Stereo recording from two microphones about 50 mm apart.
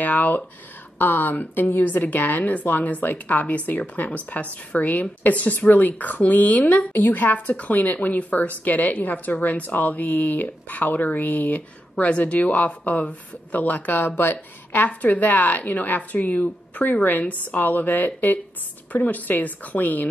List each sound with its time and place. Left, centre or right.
0.0 s a woman's voice: left